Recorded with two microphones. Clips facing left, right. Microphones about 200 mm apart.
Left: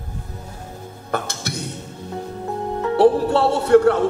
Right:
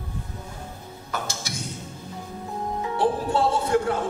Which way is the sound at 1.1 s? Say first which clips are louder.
Left 6 dB; 60° left (ahead or behind).